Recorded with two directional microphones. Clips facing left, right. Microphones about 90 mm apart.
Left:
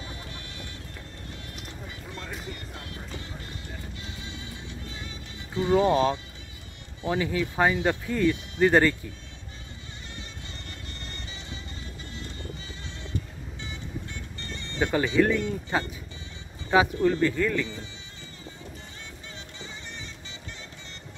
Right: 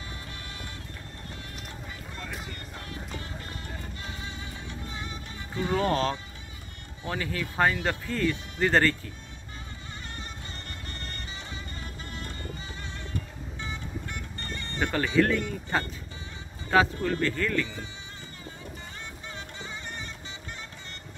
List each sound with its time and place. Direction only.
4.0 s music: 40° right (ahead or behind)
5.7 s speech: 15° left (ahead or behind)
10.0 s music: 45° right (ahead or behind)
13.6 s music: 45° right (ahead or behind)
14.8 s speech: 10° left (ahead or behind)
19.2 s music: 45° right (ahead or behind)